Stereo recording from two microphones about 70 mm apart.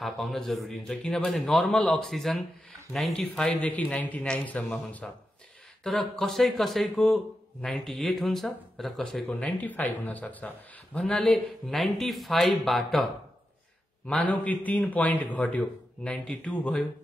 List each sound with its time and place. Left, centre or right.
0.0 s speech: centre
3.4 s a man's voice: centre
9.0 s a man's voice: centre
11.0 s speech: centre
14.2 s a man's voice: left